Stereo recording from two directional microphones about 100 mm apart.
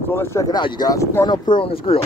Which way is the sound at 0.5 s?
45° left (ahead or behind).